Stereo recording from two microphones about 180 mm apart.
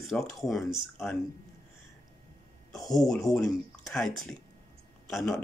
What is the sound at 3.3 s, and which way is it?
Speech, centre (ahead or behind).